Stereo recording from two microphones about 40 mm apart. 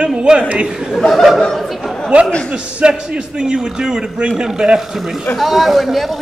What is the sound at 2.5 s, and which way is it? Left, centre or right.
A man's voice, right.